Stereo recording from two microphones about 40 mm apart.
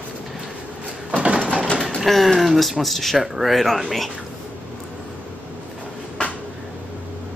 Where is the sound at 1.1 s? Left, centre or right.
Right.